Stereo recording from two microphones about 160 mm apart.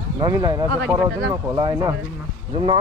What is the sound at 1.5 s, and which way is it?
Speech, 25° right (ahead or behind).